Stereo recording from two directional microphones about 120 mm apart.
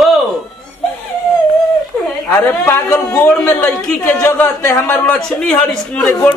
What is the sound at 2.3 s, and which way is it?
A man's voice, 15° left (ahead or behind).